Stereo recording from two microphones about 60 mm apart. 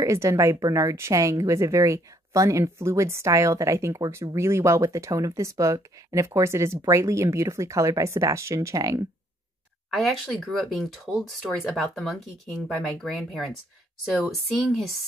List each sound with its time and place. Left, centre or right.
0.0 s speech: right
3.3 s speech: right
9.9 s speech: centre
14.5 s speech: centre